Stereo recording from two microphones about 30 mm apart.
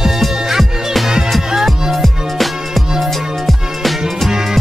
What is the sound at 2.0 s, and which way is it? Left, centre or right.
Music, centre.